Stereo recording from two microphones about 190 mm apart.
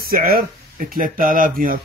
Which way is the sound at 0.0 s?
50° right (ahead or behind).